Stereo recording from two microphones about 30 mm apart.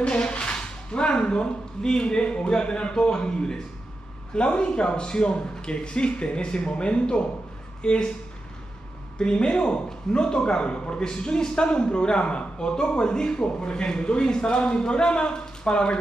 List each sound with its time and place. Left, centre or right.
0.0 s a sound: left
1.8 s a man's voice: left
9.2 s a man's voice: left